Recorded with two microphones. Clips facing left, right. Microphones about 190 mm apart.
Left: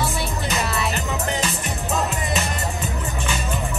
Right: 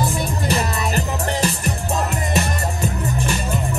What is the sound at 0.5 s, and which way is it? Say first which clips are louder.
Music: right 3 dB; 35° right (ahead or behind).